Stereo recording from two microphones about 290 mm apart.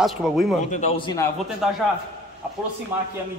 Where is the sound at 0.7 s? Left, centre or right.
Centre.